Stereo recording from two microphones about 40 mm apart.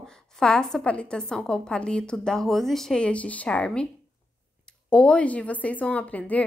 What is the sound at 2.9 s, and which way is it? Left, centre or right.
Speech, left.